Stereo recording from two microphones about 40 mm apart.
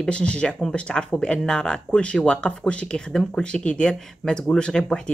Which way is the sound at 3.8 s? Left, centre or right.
Centre.